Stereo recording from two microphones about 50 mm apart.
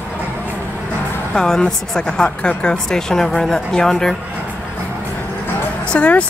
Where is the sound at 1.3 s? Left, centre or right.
Centre.